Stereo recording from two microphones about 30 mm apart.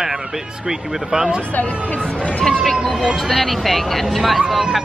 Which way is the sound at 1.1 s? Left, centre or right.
Right.